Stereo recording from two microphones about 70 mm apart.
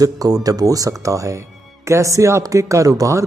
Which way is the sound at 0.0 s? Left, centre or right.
Right.